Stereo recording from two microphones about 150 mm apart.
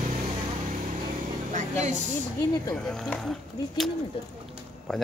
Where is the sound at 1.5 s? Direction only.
55° right (ahead or behind).